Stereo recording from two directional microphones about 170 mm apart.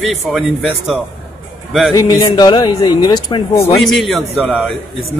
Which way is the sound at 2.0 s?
20° left (ahead or behind).